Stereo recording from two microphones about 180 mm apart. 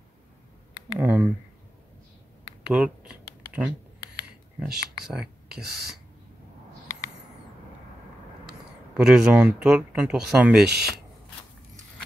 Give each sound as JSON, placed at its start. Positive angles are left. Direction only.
{"t": 0.9, "sound": "speech", "side_deg": -5}
{"t": 2.7, "sound": "a sound", "side_deg": -5}
{"t": 5.0, "sound": "speech", "side_deg": -5}
{"t": 8.9, "sound": "speech", "side_deg": -5}
{"t": 10.6, "sound": "speech", "side_deg": -65}